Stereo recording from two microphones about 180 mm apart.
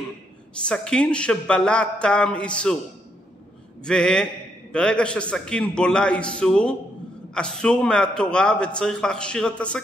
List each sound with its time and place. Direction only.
0.7 s a man's voice: 5° left (ahead or behind)
3.8 s a man's voice: 5° left (ahead or behind)